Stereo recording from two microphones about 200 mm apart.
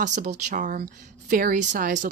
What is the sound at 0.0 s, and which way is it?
Speech, 35° right (ahead or behind).